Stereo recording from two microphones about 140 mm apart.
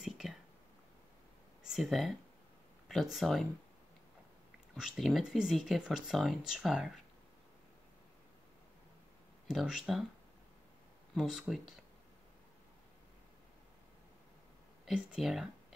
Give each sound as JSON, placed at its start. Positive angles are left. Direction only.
{"t": 0.0, "sound": "whispering", "side_deg": 0}
{"t": 1.6, "sound": "speech", "side_deg": 0}
{"t": 4.7, "sound": "speech", "side_deg": 0}
{"t": 9.5, "sound": "speech", "side_deg": -5}
{"t": 11.1, "sound": "speech", "side_deg": -5}
{"t": 14.9, "sound": "speech", "side_deg": -5}